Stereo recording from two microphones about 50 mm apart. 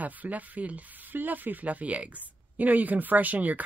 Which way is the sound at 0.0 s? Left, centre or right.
Right.